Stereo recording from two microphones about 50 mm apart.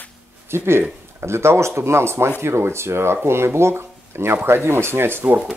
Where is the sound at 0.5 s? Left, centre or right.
Right.